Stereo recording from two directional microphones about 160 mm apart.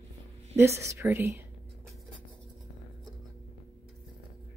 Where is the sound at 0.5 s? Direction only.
15° right (ahead or behind).